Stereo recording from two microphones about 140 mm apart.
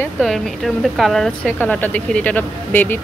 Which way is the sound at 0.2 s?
Centre (ahead or behind).